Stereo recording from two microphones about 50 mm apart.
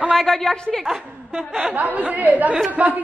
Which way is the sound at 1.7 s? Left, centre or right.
Right.